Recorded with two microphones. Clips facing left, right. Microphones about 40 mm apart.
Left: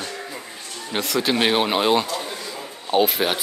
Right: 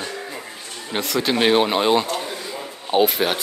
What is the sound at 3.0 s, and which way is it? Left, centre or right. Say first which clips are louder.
Speech: right 1 dB; centre.